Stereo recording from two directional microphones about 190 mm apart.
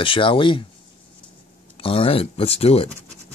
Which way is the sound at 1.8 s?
30° left (ahead or behind).